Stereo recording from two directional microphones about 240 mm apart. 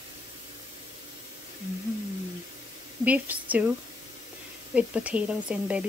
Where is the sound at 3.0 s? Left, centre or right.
Centre.